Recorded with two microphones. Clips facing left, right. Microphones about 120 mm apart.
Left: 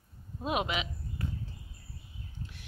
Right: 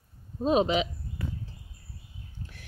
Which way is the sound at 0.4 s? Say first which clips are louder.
Right 8 dB; 30° right (ahead or behind).